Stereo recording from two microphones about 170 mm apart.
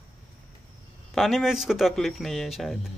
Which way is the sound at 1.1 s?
Centre (ahead or behind).